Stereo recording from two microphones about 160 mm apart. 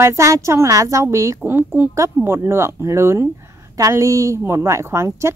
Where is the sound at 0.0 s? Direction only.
20° right (ahead or behind).